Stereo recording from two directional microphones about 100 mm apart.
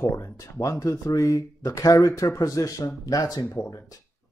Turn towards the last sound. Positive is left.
turn(degrees=35)  # may be behind; listen again after turning